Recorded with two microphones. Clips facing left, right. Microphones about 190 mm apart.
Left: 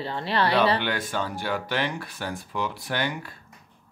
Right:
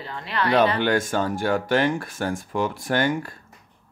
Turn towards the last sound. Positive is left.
turn(degrees=-45)  # may be behind; listen again after turning